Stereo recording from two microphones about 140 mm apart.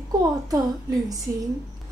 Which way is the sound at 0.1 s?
25° right (ahead or behind).